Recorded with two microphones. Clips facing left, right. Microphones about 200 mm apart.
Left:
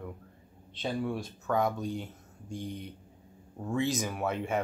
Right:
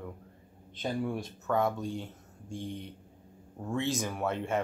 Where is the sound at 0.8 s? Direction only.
10° right (ahead or behind).